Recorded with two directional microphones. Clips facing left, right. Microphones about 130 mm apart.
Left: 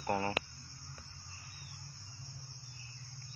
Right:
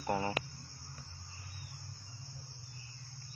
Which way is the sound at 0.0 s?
15° right (ahead or behind).